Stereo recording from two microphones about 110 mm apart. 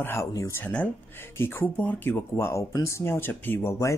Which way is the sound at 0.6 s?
15° left (ahead or behind).